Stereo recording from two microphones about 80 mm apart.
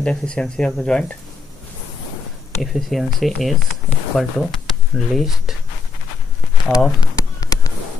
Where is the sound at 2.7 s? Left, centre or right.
Centre.